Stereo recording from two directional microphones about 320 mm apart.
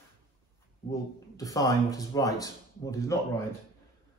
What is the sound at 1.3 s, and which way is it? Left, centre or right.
A man's voice, centre.